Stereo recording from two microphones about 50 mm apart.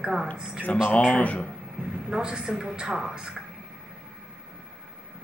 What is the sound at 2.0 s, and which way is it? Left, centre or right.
A woman's voice, centre.